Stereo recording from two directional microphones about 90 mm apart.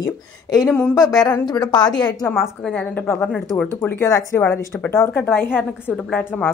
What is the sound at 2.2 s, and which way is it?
Speech, 30° left (ahead or behind).